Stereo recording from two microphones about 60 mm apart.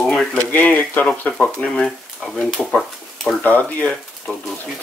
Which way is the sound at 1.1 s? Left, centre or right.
Centre.